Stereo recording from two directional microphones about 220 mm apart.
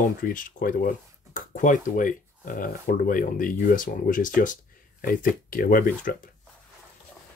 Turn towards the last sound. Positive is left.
turn(degrees=40)  # may be behind; listen again after turning